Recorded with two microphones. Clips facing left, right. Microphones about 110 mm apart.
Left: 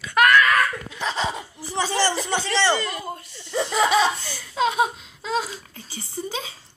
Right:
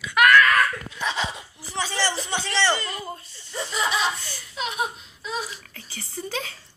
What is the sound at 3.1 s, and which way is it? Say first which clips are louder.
Speech: left 6 dB; 70° left (ahead or behind).